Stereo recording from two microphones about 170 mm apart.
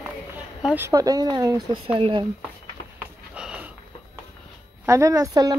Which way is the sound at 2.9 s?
5° right (ahead or behind).